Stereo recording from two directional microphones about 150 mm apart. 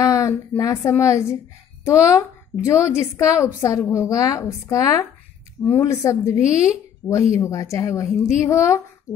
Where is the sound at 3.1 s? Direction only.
20° left (ahead or behind).